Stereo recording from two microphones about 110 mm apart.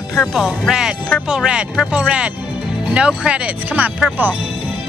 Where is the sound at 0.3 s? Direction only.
5° right (ahead or behind).